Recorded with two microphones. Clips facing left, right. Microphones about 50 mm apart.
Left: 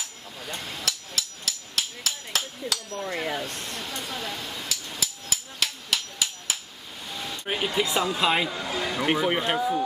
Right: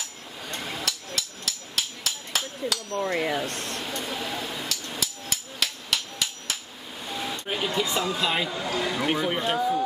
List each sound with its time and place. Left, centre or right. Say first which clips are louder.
0.0 s hammer: even; centre
3.9 s speech: right 2 dB; centre
5.0 s hammer: even; centre
7.1 s a sound: right 3 dB; centre
7.4 s speech: left 2 dB; centre
8.5 s speech: right 1 dB; centre